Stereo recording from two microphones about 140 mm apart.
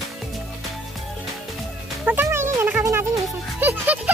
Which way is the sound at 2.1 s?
15° right (ahead or behind).